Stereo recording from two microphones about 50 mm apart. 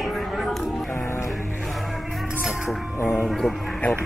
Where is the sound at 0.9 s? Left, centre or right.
Left.